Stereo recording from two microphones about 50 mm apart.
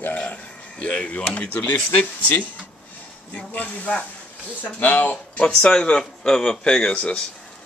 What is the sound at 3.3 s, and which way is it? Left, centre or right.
A man's voice, left.